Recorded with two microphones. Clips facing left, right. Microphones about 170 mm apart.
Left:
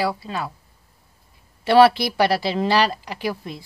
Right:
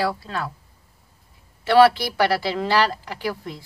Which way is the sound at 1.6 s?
15° left (ahead or behind).